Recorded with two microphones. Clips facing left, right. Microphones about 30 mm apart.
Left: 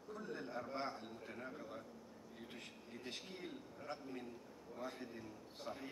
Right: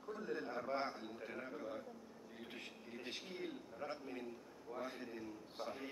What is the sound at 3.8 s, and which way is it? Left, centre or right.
Speech, right.